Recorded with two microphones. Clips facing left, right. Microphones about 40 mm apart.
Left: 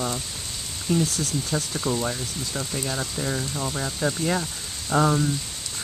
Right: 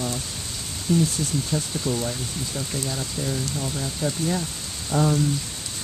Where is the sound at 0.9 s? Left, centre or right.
Left.